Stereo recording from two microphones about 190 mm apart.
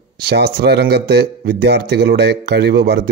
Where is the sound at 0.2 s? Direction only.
55° right (ahead or behind).